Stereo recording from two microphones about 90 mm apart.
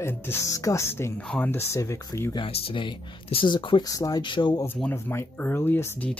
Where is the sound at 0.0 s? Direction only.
25° left (ahead or behind).